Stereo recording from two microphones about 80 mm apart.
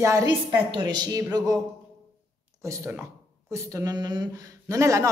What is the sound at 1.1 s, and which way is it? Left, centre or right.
Speech, right.